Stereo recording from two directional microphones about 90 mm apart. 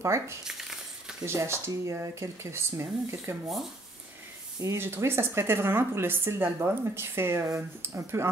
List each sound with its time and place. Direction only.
0.0 s speech: 35° right (ahead or behind)
0.5 s a sound: 5° right (ahead or behind)
1.2 s speech: 30° right (ahead or behind)
4.6 s speech: 30° right (ahead or behind)